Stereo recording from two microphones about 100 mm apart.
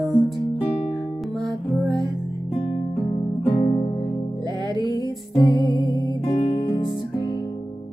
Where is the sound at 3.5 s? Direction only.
55° left (ahead or behind).